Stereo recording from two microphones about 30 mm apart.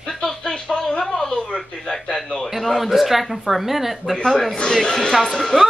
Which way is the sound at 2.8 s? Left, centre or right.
Centre.